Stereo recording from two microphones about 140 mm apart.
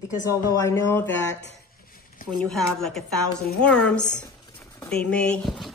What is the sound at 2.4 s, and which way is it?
A woman's voice, 5° left (ahead or behind).